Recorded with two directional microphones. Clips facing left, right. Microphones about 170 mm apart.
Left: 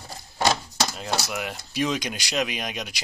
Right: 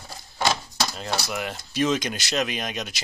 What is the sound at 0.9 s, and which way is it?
Speech, 5° left (ahead or behind).